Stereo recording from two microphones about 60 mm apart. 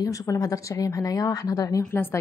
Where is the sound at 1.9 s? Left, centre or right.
Left.